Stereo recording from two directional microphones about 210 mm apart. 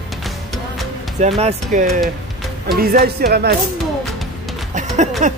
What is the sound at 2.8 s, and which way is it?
Speech, 45° right (ahead or behind).